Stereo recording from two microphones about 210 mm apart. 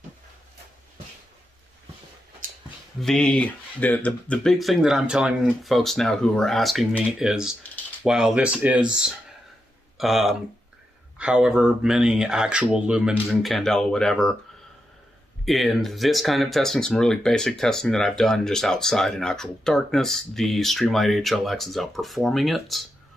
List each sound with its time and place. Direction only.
2.4 s a sound: 40° right (ahead or behind)
3.0 s speech: 5° left (ahead or behind)
15.4 s speech: centre (ahead or behind)